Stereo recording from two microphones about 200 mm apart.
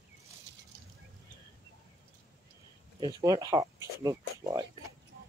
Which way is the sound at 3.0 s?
20° right (ahead or behind).